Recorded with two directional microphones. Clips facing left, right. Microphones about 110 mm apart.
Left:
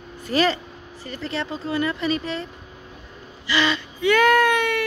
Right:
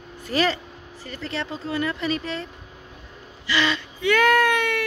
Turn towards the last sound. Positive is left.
turn(degrees=15)  # may be behind; listen again after turning